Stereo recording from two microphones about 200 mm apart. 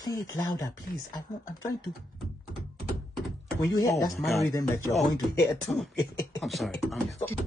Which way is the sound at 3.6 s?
15° left (ahead or behind).